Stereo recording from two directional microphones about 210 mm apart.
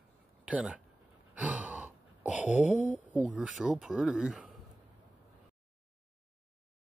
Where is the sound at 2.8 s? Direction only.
5° right (ahead or behind).